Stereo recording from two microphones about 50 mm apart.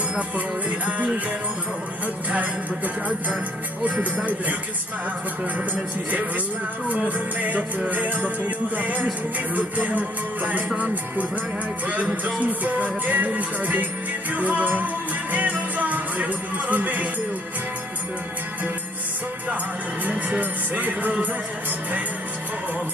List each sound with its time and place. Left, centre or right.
0.7 s music: right
2.3 s music: right
6.9 s music: right
11.9 s music: right
20.3 s music: right